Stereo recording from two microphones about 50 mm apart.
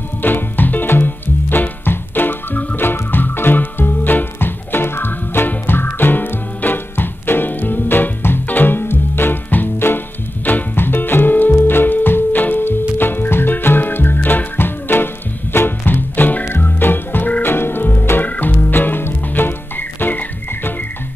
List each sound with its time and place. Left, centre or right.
0.2 s music: left
18.7 s music: left